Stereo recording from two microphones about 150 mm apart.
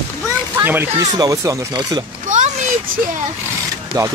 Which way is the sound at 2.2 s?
55° right (ahead or behind).